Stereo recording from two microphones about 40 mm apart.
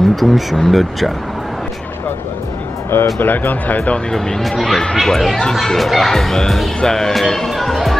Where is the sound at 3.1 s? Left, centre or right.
Left.